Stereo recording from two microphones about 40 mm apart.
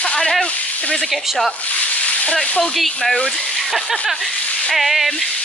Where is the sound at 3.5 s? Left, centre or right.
Centre.